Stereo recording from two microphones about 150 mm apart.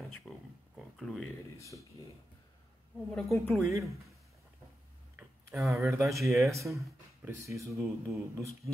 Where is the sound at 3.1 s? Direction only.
10° left (ahead or behind).